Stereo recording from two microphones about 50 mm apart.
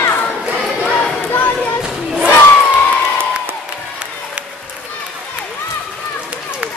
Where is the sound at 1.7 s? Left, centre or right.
Centre.